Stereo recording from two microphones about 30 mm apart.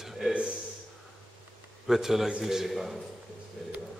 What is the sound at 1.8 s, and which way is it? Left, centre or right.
A man's voice, centre.